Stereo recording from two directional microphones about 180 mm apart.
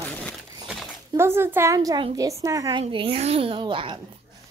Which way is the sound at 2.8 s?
30° right (ahead or behind).